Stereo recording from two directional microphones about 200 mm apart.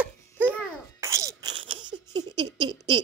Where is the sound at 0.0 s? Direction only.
10° right (ahead or behind).